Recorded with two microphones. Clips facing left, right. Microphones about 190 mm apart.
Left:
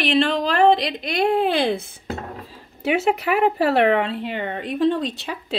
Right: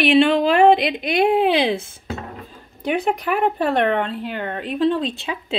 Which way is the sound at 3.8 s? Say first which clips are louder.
Left 2 dB; 5° left (ahead or behind).